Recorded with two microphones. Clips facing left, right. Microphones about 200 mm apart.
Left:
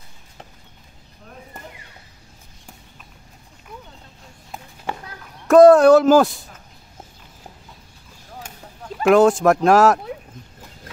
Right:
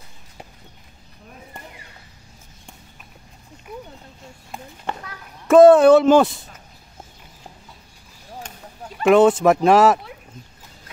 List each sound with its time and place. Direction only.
4.9 s children playing: 10° left (ahead or behind)
5.5 s speech: centre (ahead or behind)
9.0 s speech: centre (ahead or behind)